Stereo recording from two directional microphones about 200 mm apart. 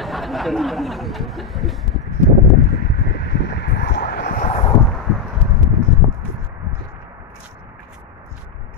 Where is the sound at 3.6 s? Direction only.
55° left (ahead or behind).